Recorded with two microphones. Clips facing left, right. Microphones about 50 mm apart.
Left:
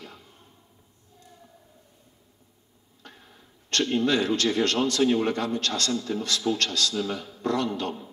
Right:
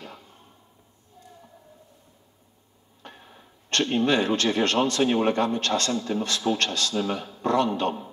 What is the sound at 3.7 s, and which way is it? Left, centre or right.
Speech, right.